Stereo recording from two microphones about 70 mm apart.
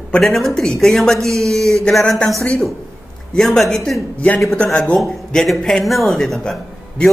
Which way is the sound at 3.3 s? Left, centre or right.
Centre.